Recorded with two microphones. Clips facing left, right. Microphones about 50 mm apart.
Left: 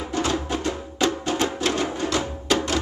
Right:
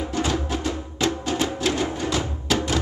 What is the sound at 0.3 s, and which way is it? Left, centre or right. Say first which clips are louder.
Music: even; centre.